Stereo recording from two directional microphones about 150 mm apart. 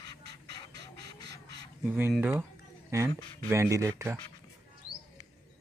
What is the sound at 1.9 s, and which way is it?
Speech, 15° right (ahead or behind).